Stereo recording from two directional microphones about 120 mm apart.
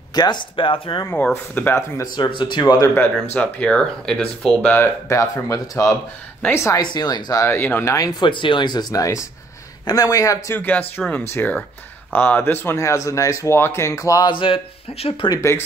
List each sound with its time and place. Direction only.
0.1 s speech: 35° left (ahead or behind)
1.0 s speech: 15° left (ahead or behind)
2.1 s speech: 45° left (ahead or behind)
3.3 s speech: 10° left (ahead or behind)
4.8 s speech: 25° left (ahead or behind)
6.8 s speech: 35° left (ahead or behind)
10.6 s speech: 15° left (ahead or behind)
14.3 s speech: 45° left (ahead or behind)
15.2 s speech: 30° left (ahead or behind)